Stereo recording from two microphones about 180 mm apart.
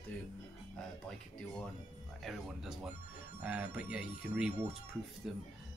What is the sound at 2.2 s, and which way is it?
Speech, centre (ahead or behind).